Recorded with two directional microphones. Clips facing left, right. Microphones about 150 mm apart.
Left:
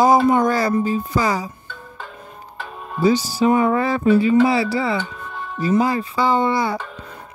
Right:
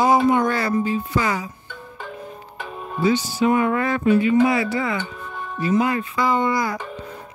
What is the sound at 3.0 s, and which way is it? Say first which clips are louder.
Speech: left 3 dB; 35° left (ahead or behind).